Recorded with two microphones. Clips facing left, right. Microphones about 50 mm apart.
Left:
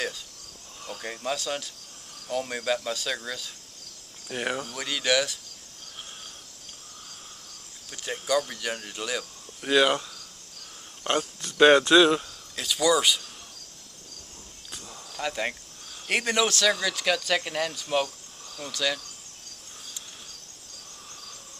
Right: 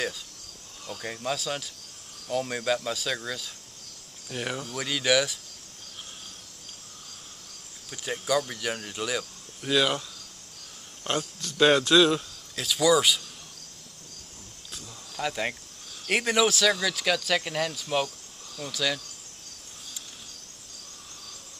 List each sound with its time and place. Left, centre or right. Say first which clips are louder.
0.8 s speech: even; centre
4.3 s speech: left 3 dB; centre
4.7 s speech: right 2 dB; centre
7.9 s speech: even; centre
9.6 s speech: left 3 dB; centre
11.4 s speech: left 4 dB; centre
12.5 s speech: right 1 dB; centre
15.1 s speech: even; centre